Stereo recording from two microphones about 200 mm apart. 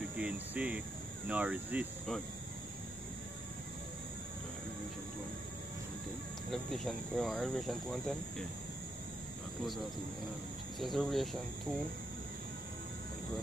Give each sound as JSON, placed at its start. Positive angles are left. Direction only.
{"t": 0.2, "sound": "speech", "side_deg": -5}
{"t": 6.5, "sound": "speech", "side_deg": 0}
{"t": 10.8, "sound": "speech", "side_deg": 0}